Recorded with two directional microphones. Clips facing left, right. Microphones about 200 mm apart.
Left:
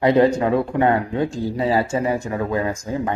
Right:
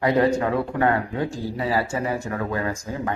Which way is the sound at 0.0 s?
20° left (ahead or behind).